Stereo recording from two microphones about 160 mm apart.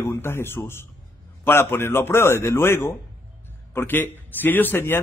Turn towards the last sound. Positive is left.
turn(degrees=10)  # may be behind; listen again after turning